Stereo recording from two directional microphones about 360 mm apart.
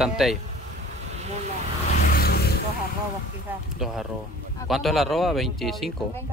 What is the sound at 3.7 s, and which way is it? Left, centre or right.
Speech, centre.